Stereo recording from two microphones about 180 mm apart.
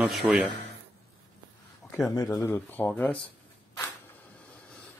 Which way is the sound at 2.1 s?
20° left (ahead or behind).